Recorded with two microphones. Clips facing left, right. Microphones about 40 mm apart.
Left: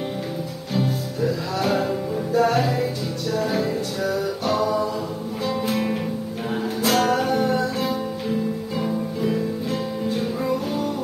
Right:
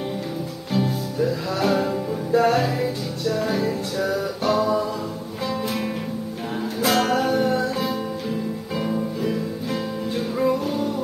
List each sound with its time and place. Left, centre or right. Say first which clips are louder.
0.7 s music: right 1 dB; centre
2.3 s music: right 1 dB; centre
5.5 s music: left 3 dB; centre
6.9 s music: even; centre
7.4 s music: even; centre
7.8 s music: left 1 dB; centre